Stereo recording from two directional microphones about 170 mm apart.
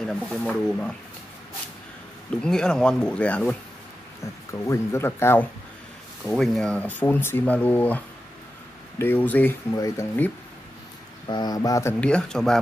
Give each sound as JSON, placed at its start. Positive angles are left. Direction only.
{"t": 0.0, "sound": "speech", "side_deg": 5}
{"t": 2.4, "sound": "speech", "side_deg": 5}
{"t": 6.2, "sound": "speech", "side_deg": 0}
{"t": 11.2, "sound": "speech", "side_deg": 25}
{"t": 12.0, "sound": "speech", "side_deg": 5}